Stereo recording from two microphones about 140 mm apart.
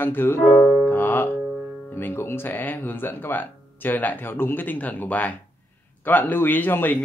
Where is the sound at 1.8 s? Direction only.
15° left (ahead or behind).